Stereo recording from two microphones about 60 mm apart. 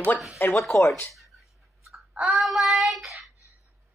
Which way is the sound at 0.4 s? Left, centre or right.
Left.